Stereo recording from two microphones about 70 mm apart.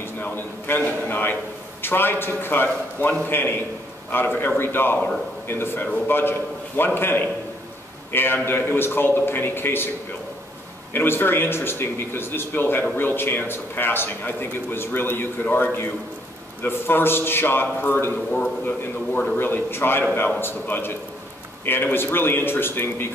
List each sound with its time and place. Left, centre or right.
0.0 s a man's voice: left
4.9 s a man's voice: centre
5.5 s speech: left
10.9 s speech: left